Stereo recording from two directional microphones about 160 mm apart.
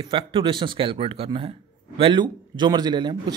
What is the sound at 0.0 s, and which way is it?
Speech, 30° right (ahead or behind).